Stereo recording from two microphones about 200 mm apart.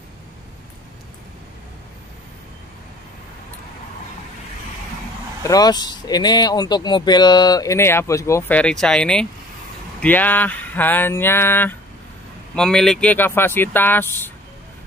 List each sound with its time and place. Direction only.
5.4 s speech: 20° left (ahead or behind)